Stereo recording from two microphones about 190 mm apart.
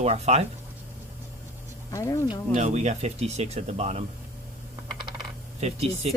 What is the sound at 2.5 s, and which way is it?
Speech, 35° right (ahead or behind).